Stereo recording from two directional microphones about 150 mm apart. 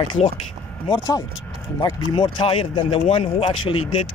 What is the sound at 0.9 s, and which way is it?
Speech, 25° left (ahead or behind).